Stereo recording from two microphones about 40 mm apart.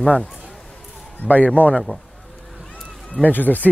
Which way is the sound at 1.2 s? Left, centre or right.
Left.